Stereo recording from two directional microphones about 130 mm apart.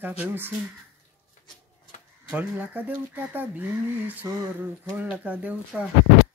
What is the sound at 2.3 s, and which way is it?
Speech, 15° right (ahead or behind).